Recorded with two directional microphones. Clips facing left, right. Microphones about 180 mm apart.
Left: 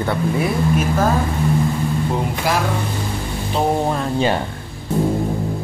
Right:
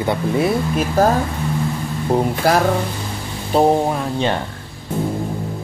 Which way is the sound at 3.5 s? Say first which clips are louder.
Right 6 dB; 40° right (ahead or behind).